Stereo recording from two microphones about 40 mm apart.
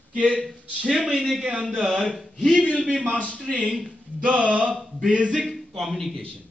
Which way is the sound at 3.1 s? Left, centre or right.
Left.